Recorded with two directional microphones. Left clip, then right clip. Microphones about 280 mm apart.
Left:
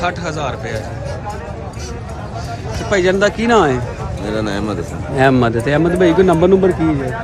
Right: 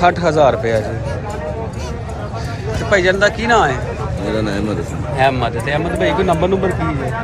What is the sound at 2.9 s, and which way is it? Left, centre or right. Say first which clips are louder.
Speech: right 1 dB; left.